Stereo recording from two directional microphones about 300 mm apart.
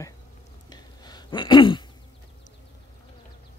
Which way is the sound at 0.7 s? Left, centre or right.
Centre.